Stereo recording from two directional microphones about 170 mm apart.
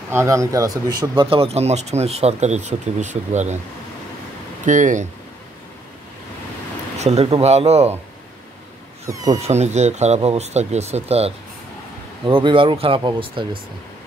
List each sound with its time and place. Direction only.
0.1 s speech: 15° right (ahead or behind); by 3.5 s 45° right (ahead or behind)
4.6 s speech: 45° right (ahead or behind)
7.0 s speech: 40° right (ahead or behind)
9.0 s speech: 20° right (ahead or behind)
9.5 s speech: 40° right (ahead or behind)